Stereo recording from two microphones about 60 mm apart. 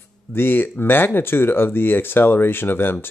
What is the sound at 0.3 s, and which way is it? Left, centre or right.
Speech, left.